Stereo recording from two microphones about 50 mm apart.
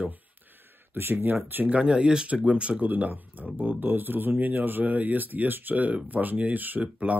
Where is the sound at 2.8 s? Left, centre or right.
Right.